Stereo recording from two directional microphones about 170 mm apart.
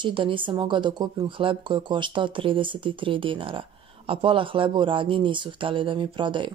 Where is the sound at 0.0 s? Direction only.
30° right (ahead or behind).